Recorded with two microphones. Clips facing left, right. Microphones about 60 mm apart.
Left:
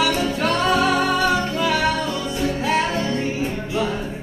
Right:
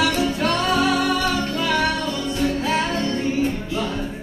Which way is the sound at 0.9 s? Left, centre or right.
Left.